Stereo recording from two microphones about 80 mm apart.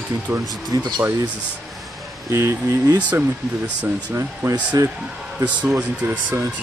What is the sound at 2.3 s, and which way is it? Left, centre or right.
Speech, right.